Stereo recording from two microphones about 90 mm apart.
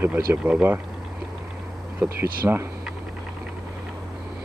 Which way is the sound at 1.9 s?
25° right (ahead or behind).